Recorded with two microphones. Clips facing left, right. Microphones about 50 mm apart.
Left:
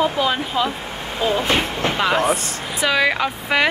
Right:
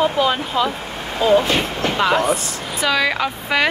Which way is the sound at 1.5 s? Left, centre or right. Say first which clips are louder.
Right 1 dB; centre.